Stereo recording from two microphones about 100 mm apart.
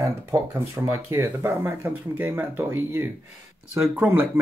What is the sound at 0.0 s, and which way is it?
Speech, 30° right (ahead or behind).